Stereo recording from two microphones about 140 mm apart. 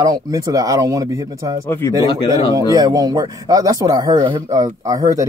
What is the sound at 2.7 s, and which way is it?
Speech, 25° right (ahead or behind).